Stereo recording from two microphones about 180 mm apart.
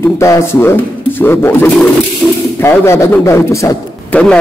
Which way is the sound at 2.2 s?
Centre (ahead or behind).